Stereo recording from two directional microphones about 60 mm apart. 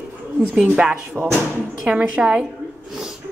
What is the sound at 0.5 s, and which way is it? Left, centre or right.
Speech, centre.